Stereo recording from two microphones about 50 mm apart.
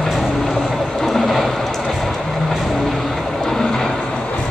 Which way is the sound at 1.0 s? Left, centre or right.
Centre.